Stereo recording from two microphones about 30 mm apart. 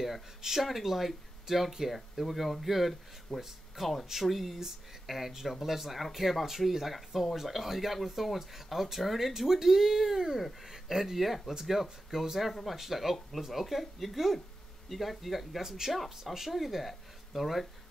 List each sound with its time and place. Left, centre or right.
0.4 s speech: centre
12.4 s speech: centre